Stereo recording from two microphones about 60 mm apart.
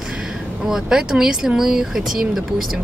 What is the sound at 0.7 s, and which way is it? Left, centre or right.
Speech, centre.